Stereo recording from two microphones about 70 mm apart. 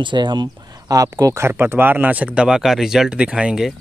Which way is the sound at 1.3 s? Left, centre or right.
Right.